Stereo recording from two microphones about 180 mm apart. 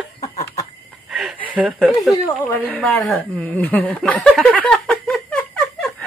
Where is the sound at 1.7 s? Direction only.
5° left (ahead or behind).